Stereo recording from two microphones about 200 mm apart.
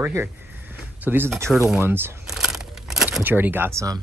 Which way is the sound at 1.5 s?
5° right (ahead or behind).